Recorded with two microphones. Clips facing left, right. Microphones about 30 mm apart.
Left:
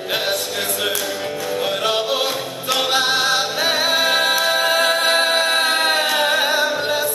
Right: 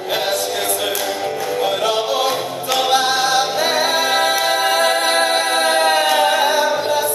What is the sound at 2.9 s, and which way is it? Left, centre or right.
A capella, centre.